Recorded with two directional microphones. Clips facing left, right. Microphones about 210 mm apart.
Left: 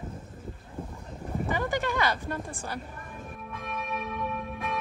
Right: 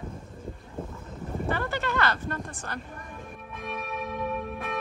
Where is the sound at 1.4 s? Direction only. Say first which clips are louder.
Left 1 dB; 15° left (ahead or behind).